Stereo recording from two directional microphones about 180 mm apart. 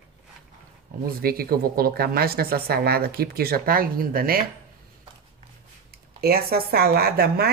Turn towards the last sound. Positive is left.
turn(degrees=-60)  # may be behind; listen again after turning